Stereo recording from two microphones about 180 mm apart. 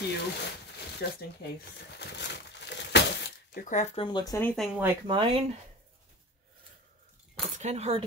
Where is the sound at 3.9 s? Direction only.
25° left (ahead or behind).